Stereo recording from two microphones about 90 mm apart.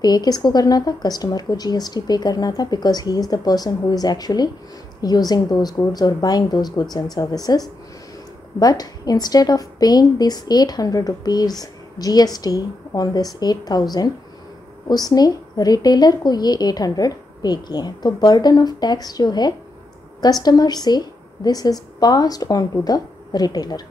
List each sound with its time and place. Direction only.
0.0 s a woman's voice: 50° left (ahead or behind)